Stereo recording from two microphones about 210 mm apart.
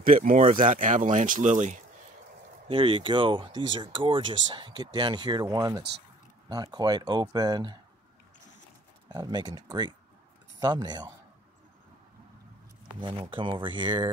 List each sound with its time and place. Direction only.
0.0 s speech: 40° right (ahead or behind)
2.7 s speech: 25° right (ahead or behind)
9.1 s speech: 20° right (ahead or behind)
13.0 s speech: 25° right (ahead or behind)